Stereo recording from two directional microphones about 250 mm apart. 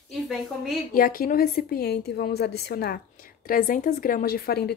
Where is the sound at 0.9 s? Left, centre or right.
Left.